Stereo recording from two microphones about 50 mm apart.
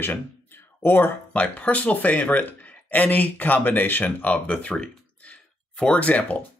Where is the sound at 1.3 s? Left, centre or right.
Left.